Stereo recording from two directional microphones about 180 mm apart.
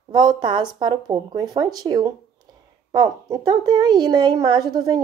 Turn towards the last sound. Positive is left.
turn(degrees=-20)  # may be behind; listen again after turning